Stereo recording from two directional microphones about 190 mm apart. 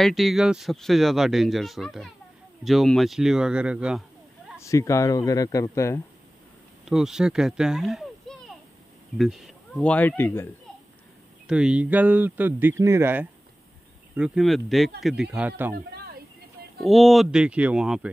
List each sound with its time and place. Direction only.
0.0 s speech: centre (ahead or behind)
4.6 s a man's voice: 15° left (ahead or behind)
6.8 s a man's voice: centre (ahead or behind)
11.4 s speech: 5° right (ahead or behind)
15.7 s a sound: 55° right (ahead or behind)
16.8 s speech: centre (ahead or behind)